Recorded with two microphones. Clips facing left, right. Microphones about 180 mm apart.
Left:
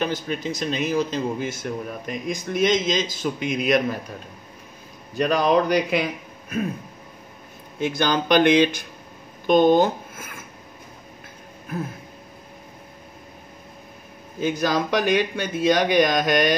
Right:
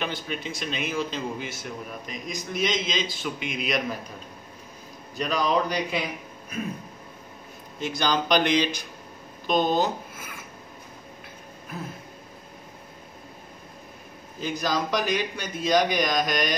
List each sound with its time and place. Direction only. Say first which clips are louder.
0.0 s a man's voice: left 6 dB; 40° left (ahead or behind)
5.1 s speech: left 6 dB; 55° left (ahead or behind)
7.8 s a man's voice: left 4 dB; 55° left (ahead or behind)
11.7 s a man's voice: left 7 dB; 55° left (ahead or behind)
14.4 s speech: left 5 dB; 60° left (ahead or behind)